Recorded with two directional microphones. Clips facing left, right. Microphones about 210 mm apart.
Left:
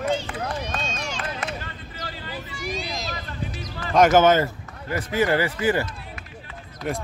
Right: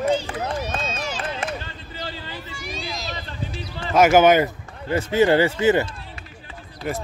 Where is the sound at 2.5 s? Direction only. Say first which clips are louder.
Left 3 dB; centre (ahead or behind).